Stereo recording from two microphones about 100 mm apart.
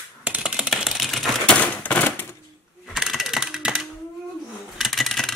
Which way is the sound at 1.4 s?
15° left (ahead or behind).